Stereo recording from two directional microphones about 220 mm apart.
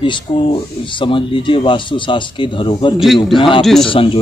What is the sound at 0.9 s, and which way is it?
Speech, 20° left (ahead or behind).